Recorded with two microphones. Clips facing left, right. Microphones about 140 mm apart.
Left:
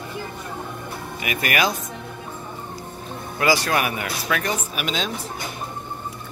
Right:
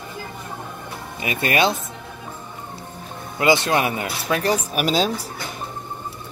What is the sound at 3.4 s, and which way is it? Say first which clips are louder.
Speech: right 3 dB; 25° right (ahead or behind).